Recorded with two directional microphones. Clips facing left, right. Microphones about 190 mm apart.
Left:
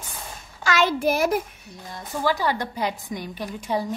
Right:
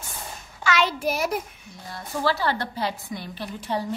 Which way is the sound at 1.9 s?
15° left (ahead or behind).